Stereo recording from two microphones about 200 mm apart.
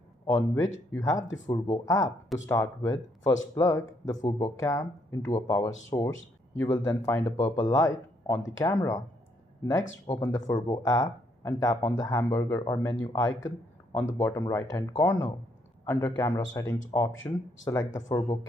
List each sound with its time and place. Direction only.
0.9 s speech: 15° left (ahead or behind)
1.2 s speech: 70° left (ahead or behind)
1.5 s speech: 15° left (ahead or behind)
17.1 s speech: 70° left (ahead or behind)
17.6 s speech: 20° left (ahead or behind)